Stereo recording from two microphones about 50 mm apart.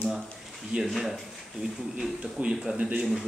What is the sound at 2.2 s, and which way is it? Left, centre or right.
Speech, right.